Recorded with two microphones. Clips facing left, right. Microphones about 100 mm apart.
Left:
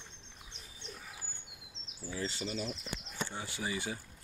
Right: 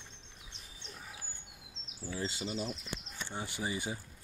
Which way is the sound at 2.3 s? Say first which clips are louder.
Even; 20° right (ahead or behind).